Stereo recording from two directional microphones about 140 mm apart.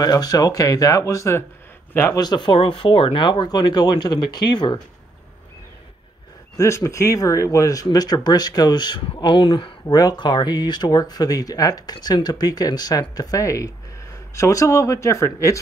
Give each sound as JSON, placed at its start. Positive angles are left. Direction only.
{"t": 0.0, "sound": "speech", "side_deg": 25}
{"t": 2.1, "sound": "speech", "side_deg": 30}
{"t": 6.5, "sound": "speech", "side_deg": 20}